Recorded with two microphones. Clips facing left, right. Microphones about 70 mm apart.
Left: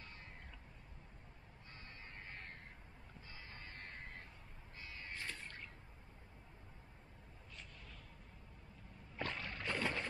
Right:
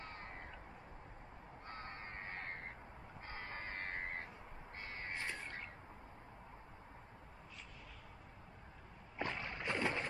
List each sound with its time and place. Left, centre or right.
0.0 s crow: right
1.7 s crow: right
3.3 s crow: right
5.1 s crow: right
9.2 s boat: centre